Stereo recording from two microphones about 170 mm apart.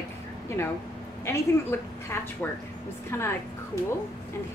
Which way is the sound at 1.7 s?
15° left (ahead or behind).